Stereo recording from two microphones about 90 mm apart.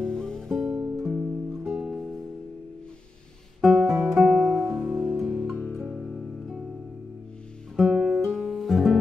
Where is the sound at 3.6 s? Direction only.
Centre (ahead or behind).